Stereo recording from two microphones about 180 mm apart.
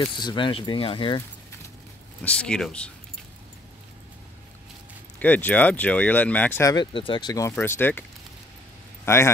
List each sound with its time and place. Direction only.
0.0 s speech: 25° left (ahead or behind)
2.2 s speech: 5° left (ahead or behind)
5.2 s speech: 10° left (ahead or behind)
6.7 s speech: 25° left (ahead or behind); by 8.0 s 10° left (ahead or behind)
9.0 s a man's voice: 15° left (ahead or behind)